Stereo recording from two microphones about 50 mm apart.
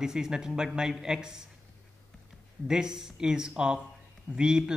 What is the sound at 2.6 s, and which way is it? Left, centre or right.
Speech, centre.